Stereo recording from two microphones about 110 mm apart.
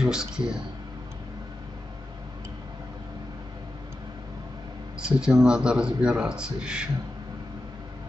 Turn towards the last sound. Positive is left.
turn(degrees=-10)  # may be behind; listen again after turning